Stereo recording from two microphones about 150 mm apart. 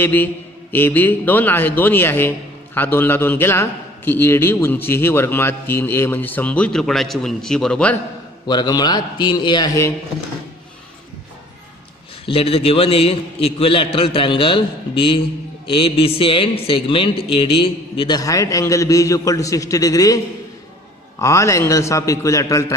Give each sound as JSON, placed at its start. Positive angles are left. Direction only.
{"t": 0.0, "sound": "a man's voice", "side_deg": 15}
{"t": 8.5, "sound": "a man's voice", "side_deg": 25}
{"t": 12.3, "sound": "a man's voice", "side_deg": 40}
{"t": 21.2, "sound": "a man's voice", "side_deg": 20}